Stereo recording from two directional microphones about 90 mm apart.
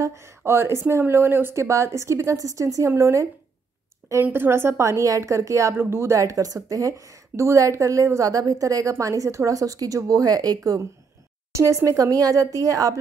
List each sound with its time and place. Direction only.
0.4 s a woman's voice: 25° right (ahead or behind)